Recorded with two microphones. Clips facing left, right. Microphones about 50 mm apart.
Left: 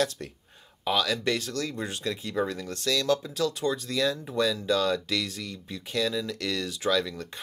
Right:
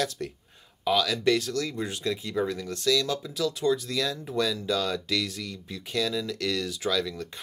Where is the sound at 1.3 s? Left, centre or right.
Left.